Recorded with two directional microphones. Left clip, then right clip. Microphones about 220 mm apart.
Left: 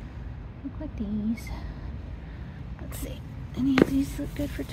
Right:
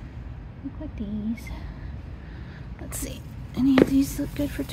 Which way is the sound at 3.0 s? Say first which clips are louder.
Right 3 dB; 15° right (ahead or behind).